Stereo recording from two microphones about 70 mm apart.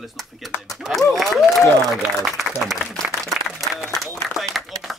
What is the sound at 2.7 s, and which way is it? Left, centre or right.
Speech, centre.